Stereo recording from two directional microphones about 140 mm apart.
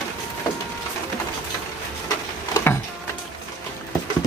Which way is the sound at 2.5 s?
15° left (ahead or behind).